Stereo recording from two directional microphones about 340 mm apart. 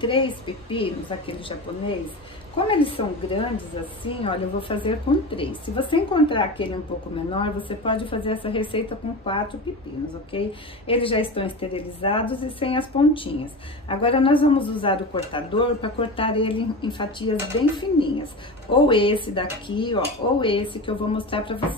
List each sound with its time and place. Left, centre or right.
0.0 s speech: centre
2.5 s speech: centre